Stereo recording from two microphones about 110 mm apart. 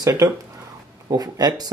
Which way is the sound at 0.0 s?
30° right (ahead or behind).